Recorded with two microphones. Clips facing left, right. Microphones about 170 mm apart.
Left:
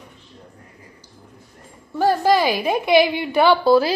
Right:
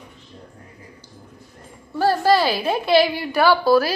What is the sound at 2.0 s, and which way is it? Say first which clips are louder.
A woman's voice: even; 15° left (ahead or behind).